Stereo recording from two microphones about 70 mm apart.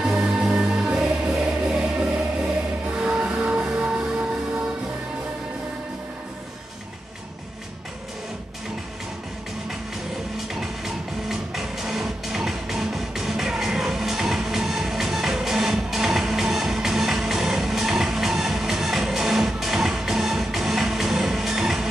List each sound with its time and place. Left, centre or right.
0.0 s music: centre
10.3 s music: centre